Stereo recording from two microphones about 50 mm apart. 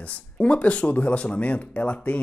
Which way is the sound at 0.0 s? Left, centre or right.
Left.